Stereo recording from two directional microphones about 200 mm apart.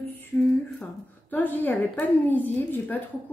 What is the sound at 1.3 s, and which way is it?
A woman's voice, 10° left (ahead or behind).